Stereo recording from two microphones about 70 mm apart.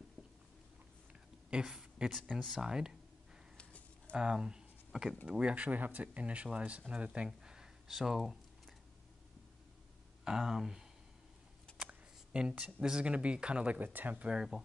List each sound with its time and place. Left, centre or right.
1.5 s a sound: centre
2.5 s speech: centre
4.1 s speech: centre
10.2 s speech: centre